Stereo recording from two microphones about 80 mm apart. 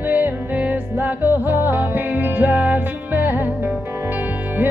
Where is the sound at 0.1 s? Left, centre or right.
Centre.